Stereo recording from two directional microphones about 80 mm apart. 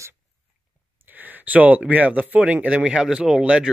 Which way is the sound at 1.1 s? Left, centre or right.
Right.